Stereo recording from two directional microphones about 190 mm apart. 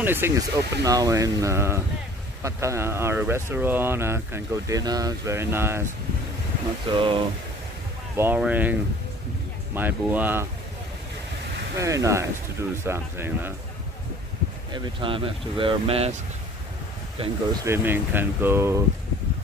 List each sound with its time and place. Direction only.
0.0 s speech: 10° right (ahead or behind)
6.9 s speech: 25° right (ahead or behind)
8.2 s speech: 10° right (ahead or behind)
9.8 s speech: 10° right (ahead or behind)
11.7 s speech: 15° right (ahead or behind)
14.7 s speech: 25° right (ahead or behind)
17.2 s speech: 30° right (ahead or behind)
17.6 s speech: 10° right (ahead or behind)